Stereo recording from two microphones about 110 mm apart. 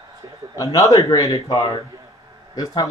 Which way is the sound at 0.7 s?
30° left (ahead or behind).